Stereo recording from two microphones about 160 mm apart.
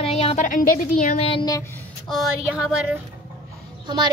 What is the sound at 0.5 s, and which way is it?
Speech, 60° left (ahead or behind).